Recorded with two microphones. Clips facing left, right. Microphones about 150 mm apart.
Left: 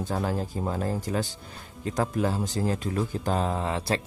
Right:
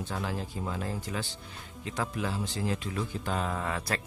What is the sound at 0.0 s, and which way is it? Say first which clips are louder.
Speech: left 6 dB; 45° left (ahead or behind).